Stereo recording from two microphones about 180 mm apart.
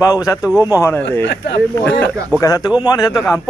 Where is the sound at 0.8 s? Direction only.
15° left (ahead or behind).